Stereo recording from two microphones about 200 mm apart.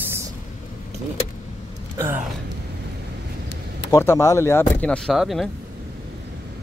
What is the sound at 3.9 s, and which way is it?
Speech, 15° left (ahead or behind).